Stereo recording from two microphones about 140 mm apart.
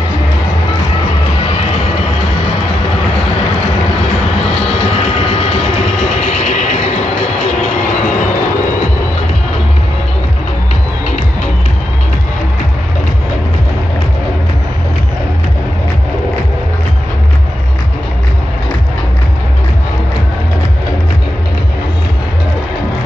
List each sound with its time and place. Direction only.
4.7 s vehicle: 50° left (ahead or behind)
5.9 s music: 55° left (ahead or behind)